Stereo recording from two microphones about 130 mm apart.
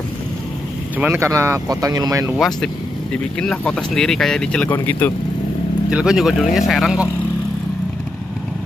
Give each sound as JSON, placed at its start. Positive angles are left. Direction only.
{"t": 0.9, "sound": "speech", "side_deg": -15}
{"t": 2.3, "sound": "speech", "side_deg": 0}
{"t": 4.6, "sound": "speech", "side_deg": 15}
{"t": 5.9, "sound": "speech", "side_deg": -5}